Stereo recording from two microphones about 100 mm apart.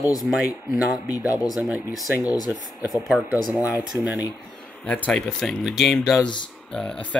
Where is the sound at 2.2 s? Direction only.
40° left (ahead or behind).